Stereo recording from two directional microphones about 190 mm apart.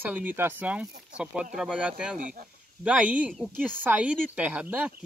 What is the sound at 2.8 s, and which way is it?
Speech, 5° right (ahead or behind).